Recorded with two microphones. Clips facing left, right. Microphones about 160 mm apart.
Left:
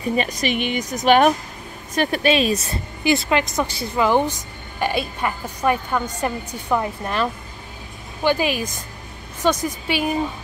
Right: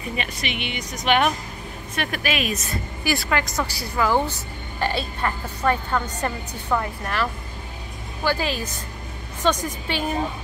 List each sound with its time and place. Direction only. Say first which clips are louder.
0.1 s a woman's voice: left 8 dB; 40° left (ahead or behind); by 10.1 s 10° left (ahead or behind)